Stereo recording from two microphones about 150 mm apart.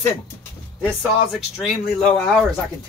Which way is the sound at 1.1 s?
Centre (ahead or behind).